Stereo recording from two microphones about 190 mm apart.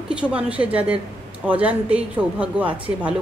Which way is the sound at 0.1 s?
5° right (ahead or behind).